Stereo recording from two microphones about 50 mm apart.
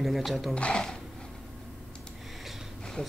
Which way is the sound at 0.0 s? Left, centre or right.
Centre.